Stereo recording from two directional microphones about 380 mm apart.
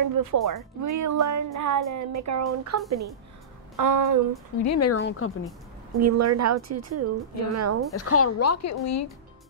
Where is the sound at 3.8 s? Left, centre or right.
Right.